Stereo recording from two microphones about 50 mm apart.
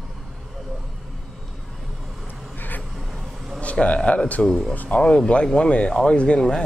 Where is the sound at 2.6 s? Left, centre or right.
Left.